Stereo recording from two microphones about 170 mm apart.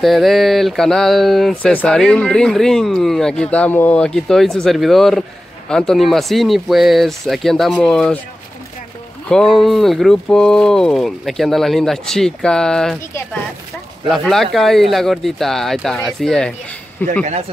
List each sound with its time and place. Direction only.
0.0 s speech: centre (ahead or behind)
9.3 s speech: centre (ahead or behind)
14.0 s speech: centre (ahead or behind)
17.2 s speech: 40° right (ahead or behind)